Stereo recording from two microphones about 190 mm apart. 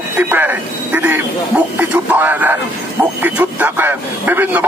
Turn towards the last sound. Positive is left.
turn(degrees=-10)  # may be behind; listen again after turning